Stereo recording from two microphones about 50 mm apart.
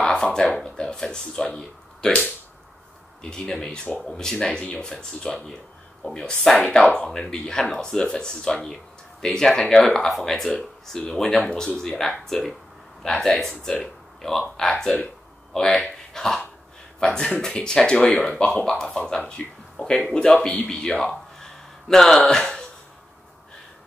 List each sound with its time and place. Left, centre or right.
0.0 s a sound: centre
0.6 s speech: centre
10.0 s speech: centre
14.7 s speech: left
15.5 s speech: centre
20.7 s a sound: centre